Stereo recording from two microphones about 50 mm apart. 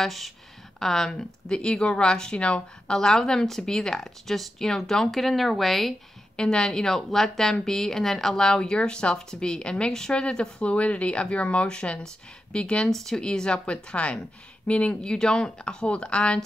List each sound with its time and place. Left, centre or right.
0.0 s speech: centre
1.1 s speech: centre
3.0 s speech: centre
6.3 s speech: centre
15.1 s speech: centre